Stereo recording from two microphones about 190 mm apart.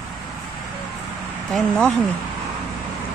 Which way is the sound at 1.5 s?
5° left (ahead or behind).